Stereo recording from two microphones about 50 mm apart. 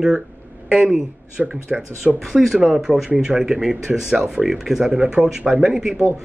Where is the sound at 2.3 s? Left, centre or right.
Centre.